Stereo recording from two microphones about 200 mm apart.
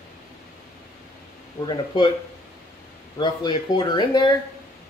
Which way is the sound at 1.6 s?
25° left (ahead or behind).